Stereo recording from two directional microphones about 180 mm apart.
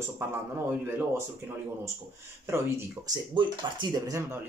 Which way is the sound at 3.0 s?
15° right (ahead or behind).